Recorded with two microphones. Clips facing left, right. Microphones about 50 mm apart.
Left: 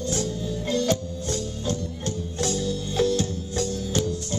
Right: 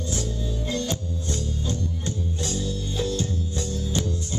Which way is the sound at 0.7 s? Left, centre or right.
Left.